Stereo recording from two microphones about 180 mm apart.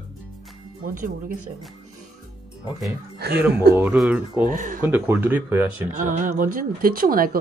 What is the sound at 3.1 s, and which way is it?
Speech, 65° right (ahead or behind).